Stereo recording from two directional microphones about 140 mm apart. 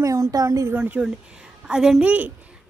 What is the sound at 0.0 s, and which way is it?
Speech, 25° right (ahead or behind).